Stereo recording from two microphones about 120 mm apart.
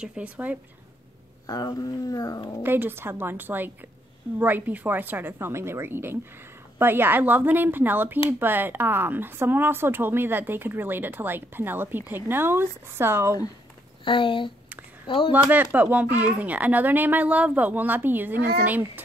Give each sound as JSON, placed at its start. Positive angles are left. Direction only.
{"t": 0.0, "sound": "speech", "side_deg": -10}
{"t": 1.5, "sound": "speech", "side_deg": 30}
{"t": 2.6, "sound": "speech", "side_deg": -20}
{"t": 14.0, "sound": "speech", "side_deg": 45}
{"t": 15.3, "sound": "speech", "side_deg": -15}